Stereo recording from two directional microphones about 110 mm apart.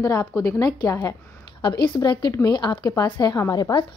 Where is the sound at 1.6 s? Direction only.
45° left (ahead or behind).